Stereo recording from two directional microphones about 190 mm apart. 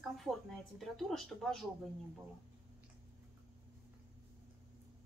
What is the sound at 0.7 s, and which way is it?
Speech, centre (ahead or behind).